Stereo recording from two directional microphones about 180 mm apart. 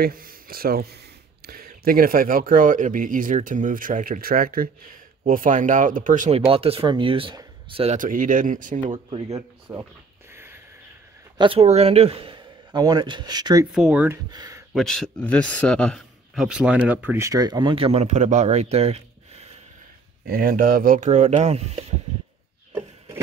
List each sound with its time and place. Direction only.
0.0 s speech: 55° right (ahead or behind)
9.3 s speech: 15° right (ahead or behind)
10.3 s a sound: 15° right (ahead or behind)
11.3 s a man's voice: 30° right (ahead or behind)
13.7 s a man's voice: 5° right (ahead or behind)
14.7 s a man's voice: centre (ahead or behind); by 19.6 s 35° right (ahead or behind)
20.2 s speech: 50° right (ahead or behind)